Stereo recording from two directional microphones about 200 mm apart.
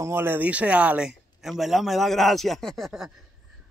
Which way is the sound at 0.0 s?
10° right (ahead or behind).